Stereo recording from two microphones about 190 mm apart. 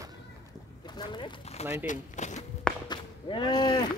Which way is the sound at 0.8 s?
25° left (ahead or behind).